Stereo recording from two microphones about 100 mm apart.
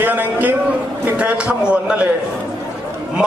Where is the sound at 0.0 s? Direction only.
20° right (ahead or behind).